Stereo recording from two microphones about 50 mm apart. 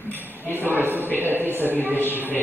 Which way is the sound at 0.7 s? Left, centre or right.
Right.